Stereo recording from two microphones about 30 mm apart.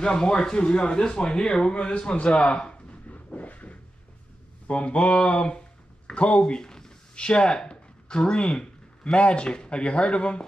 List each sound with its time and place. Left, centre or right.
0.0 s speech: left
3.1 s a sound: left
4.6 s speech: left
5.1 s speech: left
6.6 s a sound: centre
9.2 s speech: left